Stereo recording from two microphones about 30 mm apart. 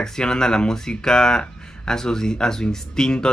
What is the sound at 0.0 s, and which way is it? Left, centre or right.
Speech, left.